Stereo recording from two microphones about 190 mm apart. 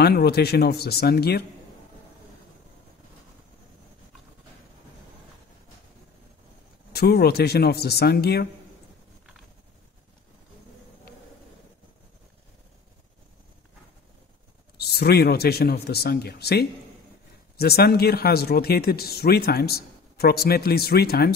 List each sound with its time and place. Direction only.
0.0 s speech: 55° left (ahead or behind)
6.9 s speech: 55° left (ahead or behind)
14.8 s speech: 55° left (ahead or behind)